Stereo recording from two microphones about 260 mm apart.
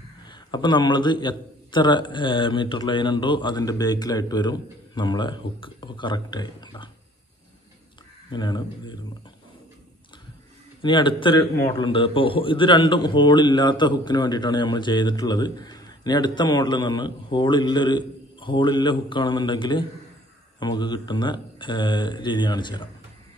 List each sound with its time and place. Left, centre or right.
0.2 s a man's voice: centre
8.3 s a man's voice: centre
10.8 s a man's voice: centre